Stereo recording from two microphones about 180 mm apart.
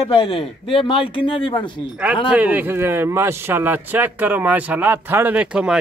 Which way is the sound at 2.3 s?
10° right (ahead or behind).